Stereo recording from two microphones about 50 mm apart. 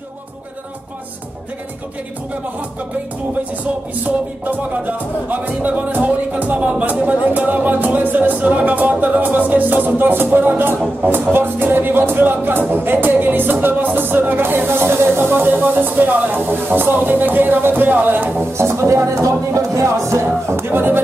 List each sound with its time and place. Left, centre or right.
3.6 s music: right
18.6 s speech: right